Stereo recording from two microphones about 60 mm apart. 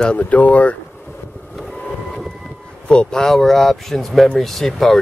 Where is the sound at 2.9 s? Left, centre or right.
Centre.